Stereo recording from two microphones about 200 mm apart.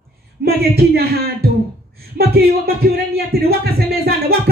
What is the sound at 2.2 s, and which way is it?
Speech, 50° right (ahead or behind).